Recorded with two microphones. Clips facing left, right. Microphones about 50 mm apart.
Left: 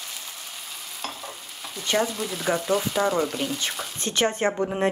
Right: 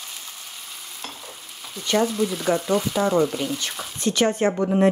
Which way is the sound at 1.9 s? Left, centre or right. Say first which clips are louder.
Right 4 dB; centre.